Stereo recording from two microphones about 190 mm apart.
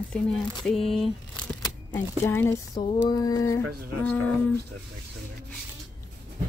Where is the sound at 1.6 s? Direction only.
15° left (ahead or behind).